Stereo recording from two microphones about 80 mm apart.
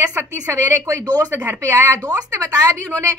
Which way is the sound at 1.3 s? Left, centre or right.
Right.